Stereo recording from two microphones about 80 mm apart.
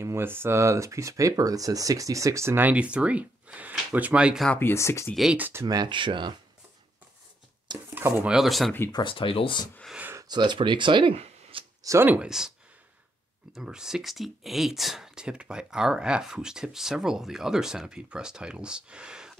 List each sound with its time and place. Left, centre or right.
0.0 s speech: right
2.6 s speech: centre
4.6 s speech: left
5.5 s speech: right
5.9 s speech: right
7.9 s speech: right
8.3 s speech: centre
8.9 s speech: left
10.2 s speech: right
11.8 s speech: right
12.2 s speech: centre
13.6 s speech: centre